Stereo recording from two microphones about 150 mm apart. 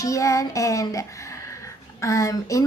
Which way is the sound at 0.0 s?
20° left (ahead or behind).